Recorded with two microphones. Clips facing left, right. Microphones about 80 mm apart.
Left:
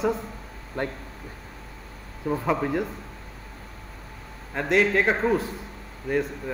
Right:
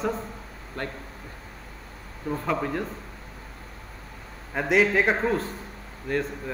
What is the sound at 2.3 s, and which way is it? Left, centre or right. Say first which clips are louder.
Speech: left 3 dB; centre.